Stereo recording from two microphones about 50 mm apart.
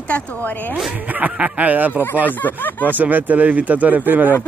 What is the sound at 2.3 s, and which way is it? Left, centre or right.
Speech, left.